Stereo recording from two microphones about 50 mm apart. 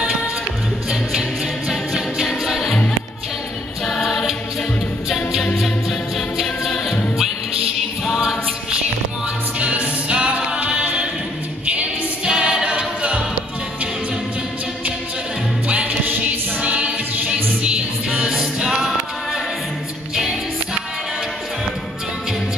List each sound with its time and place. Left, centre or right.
1.7 s music: centre
3.8 s choir: centre
5.1 s music: centre
9.6 s music: right
12.3 s choir: centre
16.3 s choir: right
18.1 s music: centre